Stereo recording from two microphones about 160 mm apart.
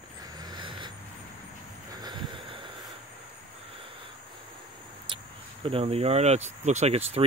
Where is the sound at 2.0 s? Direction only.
25° right (ahead or behind).